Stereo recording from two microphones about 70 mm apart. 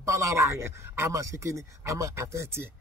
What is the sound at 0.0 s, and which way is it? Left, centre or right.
Speech, right.